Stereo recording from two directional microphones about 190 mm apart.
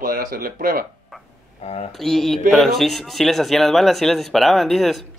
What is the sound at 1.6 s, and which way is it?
Speech, 35° left (ahead or behind).